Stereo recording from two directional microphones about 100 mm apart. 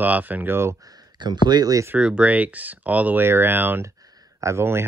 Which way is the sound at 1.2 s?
45° right (ahead or behind).